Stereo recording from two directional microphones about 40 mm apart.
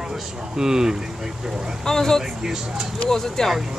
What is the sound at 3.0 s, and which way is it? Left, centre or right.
Speech, centre.